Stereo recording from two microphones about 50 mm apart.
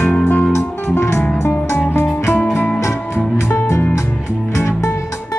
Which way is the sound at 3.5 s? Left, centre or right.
Left.